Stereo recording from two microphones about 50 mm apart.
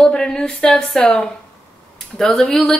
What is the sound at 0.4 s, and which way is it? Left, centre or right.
Speech, centre.